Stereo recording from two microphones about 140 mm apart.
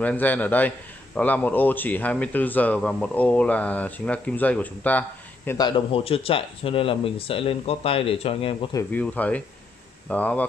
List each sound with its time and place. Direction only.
0.0 s a man's voice: 10° left (ahead or behind)
5.6 s speech: 35° left (ahead or behind)
8.9 s a man's voice: 10° left (ahead or behind)